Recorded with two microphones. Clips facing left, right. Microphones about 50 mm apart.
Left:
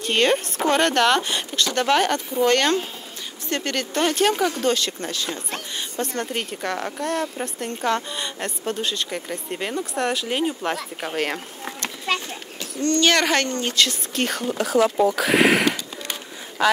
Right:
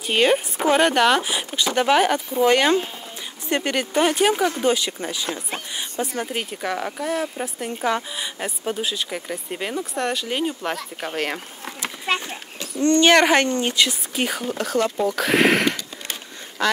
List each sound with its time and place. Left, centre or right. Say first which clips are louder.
0.0 s speech: right 1 dB; centre
12.3 s speech: even; right; by 15.8 s centre